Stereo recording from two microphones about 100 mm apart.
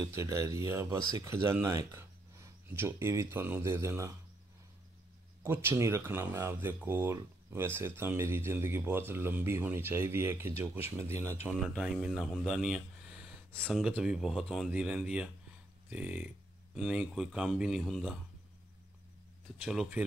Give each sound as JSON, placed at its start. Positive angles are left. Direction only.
{"t": 0.1, "sound": "speech", "side_deg": -30}
{"t": 5.4, "sound": "speech", "side_deg": -25}
{"t": 11.6, "sound": "speech", "side_deg": 0}
{"t": 13.5, "sound": "speech", "side_deg": 10}
{"t": 14.0, "sound": "speech", "side_deg": -5}
{"t": 19.6, "sound": "speech", "side_deg": 0}